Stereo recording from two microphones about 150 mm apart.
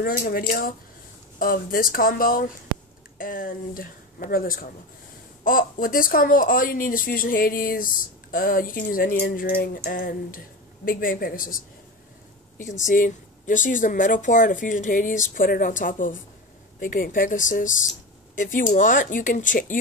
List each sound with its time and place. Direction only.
0.0 s speech: 75° left (ahead or behind)
12.5 s speech: 55° left (ahead or behind)